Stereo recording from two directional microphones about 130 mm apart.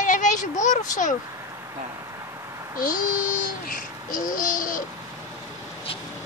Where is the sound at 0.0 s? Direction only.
75° left (ahead or behind).